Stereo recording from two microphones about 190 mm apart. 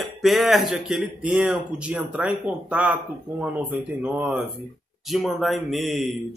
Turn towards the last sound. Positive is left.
turn(degrees=0)  # may be behind; listen again after turning